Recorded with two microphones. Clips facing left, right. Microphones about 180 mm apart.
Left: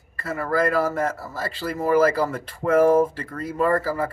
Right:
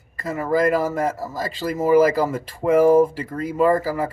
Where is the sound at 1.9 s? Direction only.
10° right (ahead or behind).